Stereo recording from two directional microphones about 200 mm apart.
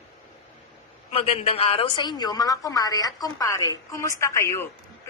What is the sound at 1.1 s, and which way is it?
A woman's voice, 30° left (ahead or behind).